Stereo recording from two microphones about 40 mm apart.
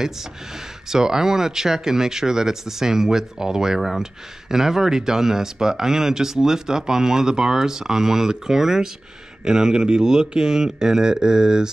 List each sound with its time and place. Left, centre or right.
0.8 s speech: centre